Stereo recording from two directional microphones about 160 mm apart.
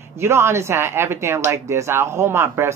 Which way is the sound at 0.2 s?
15° right (ahead or behind).